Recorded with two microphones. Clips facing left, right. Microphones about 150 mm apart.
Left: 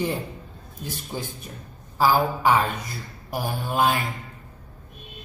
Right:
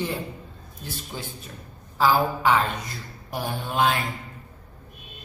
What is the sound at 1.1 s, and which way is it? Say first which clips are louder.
Speech: left 3 dB; 15° left (ahead or behind).